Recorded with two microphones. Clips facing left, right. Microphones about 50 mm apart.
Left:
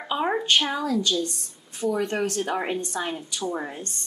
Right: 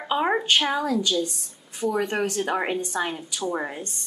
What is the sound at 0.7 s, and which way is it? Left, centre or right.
Speech, centre.